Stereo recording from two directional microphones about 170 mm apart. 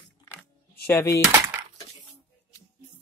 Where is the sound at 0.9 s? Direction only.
15° left (ahead or behind).